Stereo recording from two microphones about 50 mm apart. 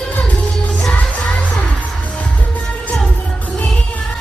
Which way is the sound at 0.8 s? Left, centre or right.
Left.